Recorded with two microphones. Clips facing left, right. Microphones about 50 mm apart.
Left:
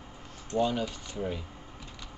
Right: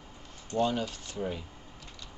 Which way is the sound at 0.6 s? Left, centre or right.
Centre.